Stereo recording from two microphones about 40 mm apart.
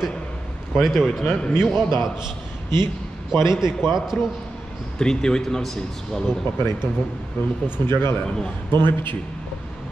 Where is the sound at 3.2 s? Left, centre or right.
Centre.